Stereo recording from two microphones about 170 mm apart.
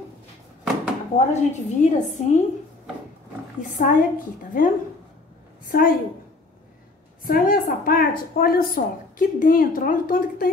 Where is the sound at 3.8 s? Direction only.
55° left (ahead or behind).